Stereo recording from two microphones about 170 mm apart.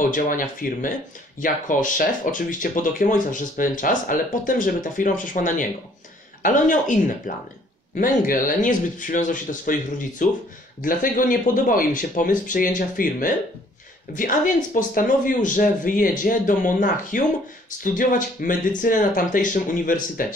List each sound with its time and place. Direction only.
0.0 s speech: 50° left (ahead or behind)